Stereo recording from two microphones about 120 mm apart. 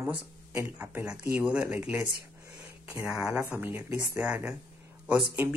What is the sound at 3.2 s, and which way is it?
Speech, 5° right (ahead or behind).